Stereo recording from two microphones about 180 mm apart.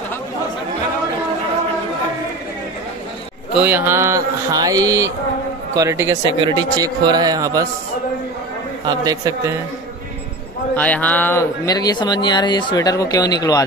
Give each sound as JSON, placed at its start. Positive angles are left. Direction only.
{"t": 3.5, "sound": "a man's voice", "side_deg": -10}
{"t": 8.8, "sound": "a man's voice", "side_deg": -20}
{"t": 10.8, "sound": "speech", "side_deg": 10}